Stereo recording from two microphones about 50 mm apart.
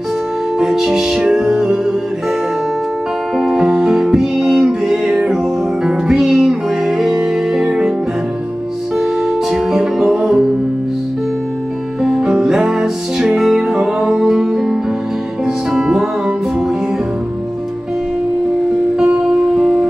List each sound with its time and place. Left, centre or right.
0.6 s music: centre
3.3 s music: centre
8.9 s music: centre
12.0 s music: centre
19.2 s music: centre